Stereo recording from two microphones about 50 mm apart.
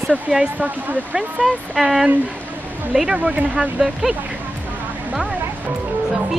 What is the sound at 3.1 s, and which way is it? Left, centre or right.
Speech, right.